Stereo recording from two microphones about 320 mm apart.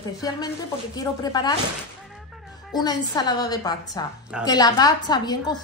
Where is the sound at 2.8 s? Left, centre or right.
Centre.